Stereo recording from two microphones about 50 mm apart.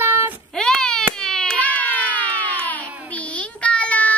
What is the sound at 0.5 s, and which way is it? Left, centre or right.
Baby cry, centre.